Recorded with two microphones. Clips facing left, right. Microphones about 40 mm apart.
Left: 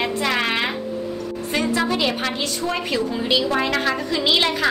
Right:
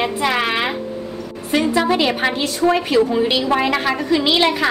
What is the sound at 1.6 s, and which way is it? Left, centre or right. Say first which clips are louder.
A woman's voice: right 4 dB; right.